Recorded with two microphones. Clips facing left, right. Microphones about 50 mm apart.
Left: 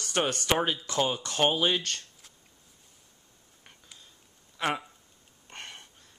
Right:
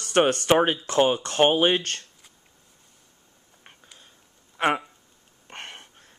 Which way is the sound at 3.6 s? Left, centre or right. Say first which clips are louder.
Right 3 dB; right.